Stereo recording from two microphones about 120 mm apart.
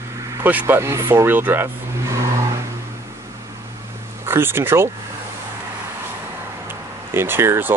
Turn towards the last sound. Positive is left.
turn(degrees=-20)  # may be behind; listen again after turning